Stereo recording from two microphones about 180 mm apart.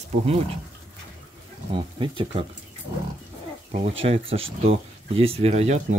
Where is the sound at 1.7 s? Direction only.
30° right (ahead or behind).